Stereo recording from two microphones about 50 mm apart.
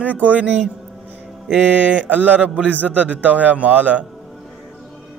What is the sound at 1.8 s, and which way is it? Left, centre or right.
A man's voice, right.